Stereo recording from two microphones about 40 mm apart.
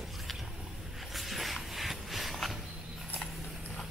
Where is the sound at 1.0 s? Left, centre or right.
Centre.